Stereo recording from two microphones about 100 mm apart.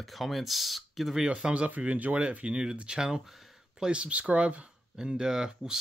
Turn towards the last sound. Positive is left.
turn(degrees=-5)  # may be behind; listen again after turning